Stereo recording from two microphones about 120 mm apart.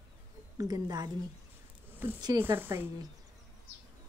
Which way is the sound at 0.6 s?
30° right (ahead or behind).